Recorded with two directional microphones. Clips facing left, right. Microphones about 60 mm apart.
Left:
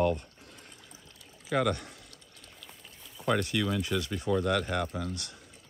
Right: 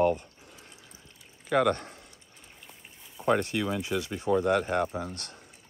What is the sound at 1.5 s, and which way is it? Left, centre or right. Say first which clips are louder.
Speech: right 4 dB; right.